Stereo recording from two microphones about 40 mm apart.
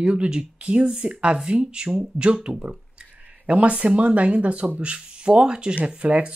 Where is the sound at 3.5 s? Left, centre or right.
Right.